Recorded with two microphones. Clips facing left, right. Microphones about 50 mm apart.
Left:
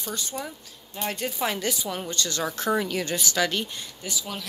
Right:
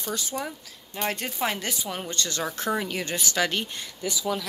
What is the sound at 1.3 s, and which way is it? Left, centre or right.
Speech, right.